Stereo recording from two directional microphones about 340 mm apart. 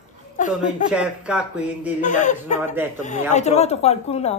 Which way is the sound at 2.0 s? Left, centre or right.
Left.